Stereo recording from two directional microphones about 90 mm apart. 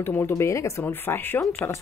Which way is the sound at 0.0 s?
30° left (ahead or behind).